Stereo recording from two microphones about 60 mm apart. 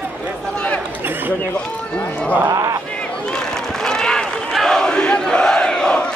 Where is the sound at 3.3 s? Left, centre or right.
Centre.